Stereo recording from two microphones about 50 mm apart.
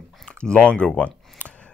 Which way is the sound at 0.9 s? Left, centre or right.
Left.